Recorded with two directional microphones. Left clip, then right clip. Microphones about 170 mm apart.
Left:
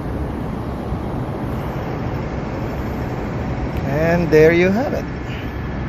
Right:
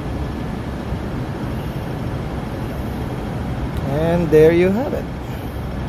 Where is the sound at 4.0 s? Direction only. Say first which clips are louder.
Even; 15° right (ahead or behind).